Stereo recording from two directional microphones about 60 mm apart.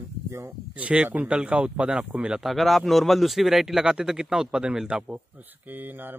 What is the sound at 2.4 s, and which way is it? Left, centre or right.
Speech, centre.